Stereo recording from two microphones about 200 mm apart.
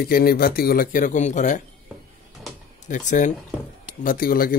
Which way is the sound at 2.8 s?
40° left (ahead or behind).